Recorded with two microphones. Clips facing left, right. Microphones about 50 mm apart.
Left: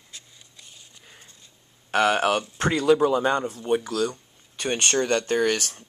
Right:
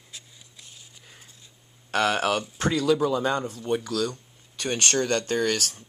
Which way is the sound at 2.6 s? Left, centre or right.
Left.